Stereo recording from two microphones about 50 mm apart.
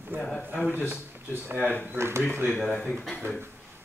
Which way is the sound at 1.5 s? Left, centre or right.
Left.